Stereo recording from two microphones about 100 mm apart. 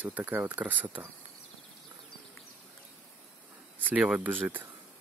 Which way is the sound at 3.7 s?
15° right (ahead or behind).